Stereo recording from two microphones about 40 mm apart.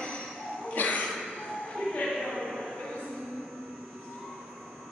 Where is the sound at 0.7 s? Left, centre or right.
Left.